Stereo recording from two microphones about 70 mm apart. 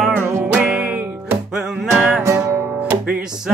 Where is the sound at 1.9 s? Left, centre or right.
Right.